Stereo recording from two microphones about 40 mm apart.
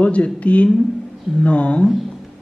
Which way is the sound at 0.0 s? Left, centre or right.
Left.